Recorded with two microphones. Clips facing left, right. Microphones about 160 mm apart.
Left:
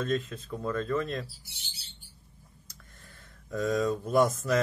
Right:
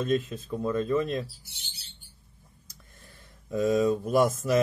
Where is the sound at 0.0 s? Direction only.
15° right (ahead or behind).